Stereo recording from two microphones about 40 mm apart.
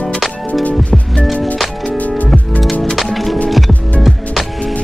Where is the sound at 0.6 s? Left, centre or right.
Left.